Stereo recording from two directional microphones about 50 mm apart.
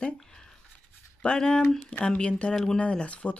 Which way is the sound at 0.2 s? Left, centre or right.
Centre.